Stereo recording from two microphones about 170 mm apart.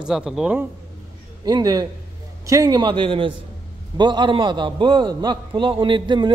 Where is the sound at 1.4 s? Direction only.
25° right (ahead or behind).